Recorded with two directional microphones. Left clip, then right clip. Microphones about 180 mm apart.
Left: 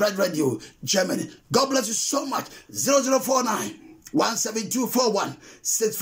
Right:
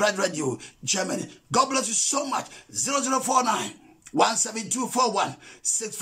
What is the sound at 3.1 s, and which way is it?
Speech, 20° right (ahead or behind).